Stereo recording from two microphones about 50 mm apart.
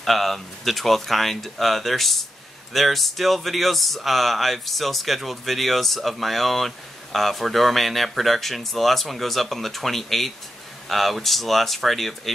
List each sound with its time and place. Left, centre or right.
0.0 s speech: centre